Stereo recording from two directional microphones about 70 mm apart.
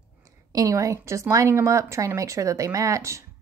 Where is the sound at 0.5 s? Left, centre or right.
Right.